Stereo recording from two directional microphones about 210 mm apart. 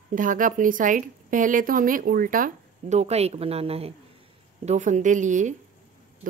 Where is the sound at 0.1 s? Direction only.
40° right (ahead or behind).